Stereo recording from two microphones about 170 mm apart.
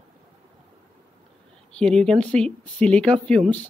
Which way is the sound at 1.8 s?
5° left (ahead or behind).